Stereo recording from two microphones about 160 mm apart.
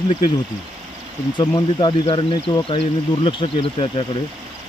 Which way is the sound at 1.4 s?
30° left (ahead or behind).